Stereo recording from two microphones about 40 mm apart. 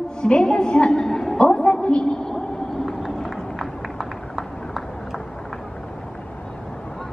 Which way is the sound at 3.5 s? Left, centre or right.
Centre.